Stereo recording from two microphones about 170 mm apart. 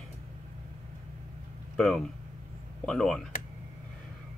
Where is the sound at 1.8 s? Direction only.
Centre (ahead or behind).